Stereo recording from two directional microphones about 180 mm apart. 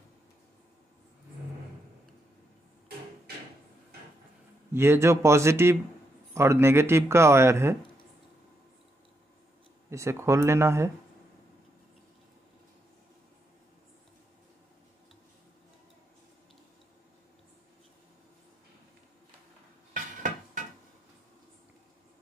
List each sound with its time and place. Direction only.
4.7 s speech: 15° right (ahead or behind)
9.8 s speech: 15° right (ahead or behind)
19.9 s dishes: 45° right (ahead or behind)